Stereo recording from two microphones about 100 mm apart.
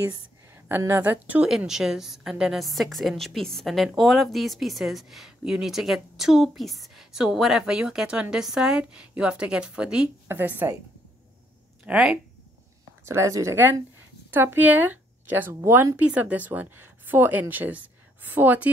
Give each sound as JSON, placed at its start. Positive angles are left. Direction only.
{"t": 0.7, "sound": "a woman's voice", "side_deg": -25}
{"t": 1.7, "sound": "a woman's voice", "side_deg": -5}
{"t": 10.2, "sound": "speech", "side_deg": -20}
{"t": 11.8, "sound": "speech", "side_deg": -10}
{"t": 13.0, "sound": "speech", "side_deg": -30}
{"t": 16.0, "sound": "speech", "side_deg": -15}